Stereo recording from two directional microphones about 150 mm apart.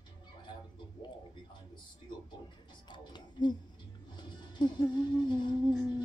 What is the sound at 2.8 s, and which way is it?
Music, 30° left (ahead or behind).